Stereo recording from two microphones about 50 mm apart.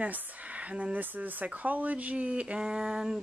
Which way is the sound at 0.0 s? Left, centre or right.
Right.